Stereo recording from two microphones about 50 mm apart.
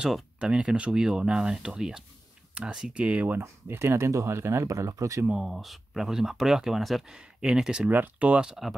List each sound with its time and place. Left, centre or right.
0.4 s speech: centre
3.3 s speech: right
5.3 s speech: centre
7.1 s speech: centre
7.9 s speech: right
8.6 s speech: centre